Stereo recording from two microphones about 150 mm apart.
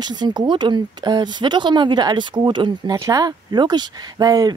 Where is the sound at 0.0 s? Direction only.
30° right (ahead or behind).